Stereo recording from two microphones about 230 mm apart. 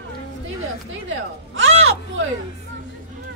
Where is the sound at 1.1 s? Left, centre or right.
Right.